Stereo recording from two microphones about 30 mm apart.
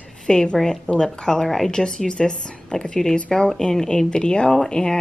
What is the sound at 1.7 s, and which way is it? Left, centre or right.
A woman's voice, left.